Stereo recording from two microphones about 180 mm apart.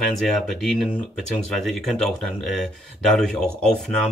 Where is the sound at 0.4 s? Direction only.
5° left (ahead or behind).